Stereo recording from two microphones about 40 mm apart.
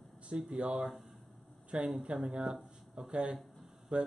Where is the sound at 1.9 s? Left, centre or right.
Right.